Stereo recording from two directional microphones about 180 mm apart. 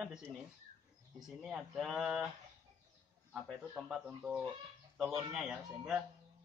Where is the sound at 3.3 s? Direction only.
Centre (ahead or behind).